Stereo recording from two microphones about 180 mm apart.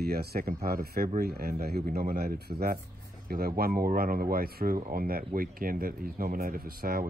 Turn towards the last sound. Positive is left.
turn(degrees=-55)  # may be behind; listen again after turning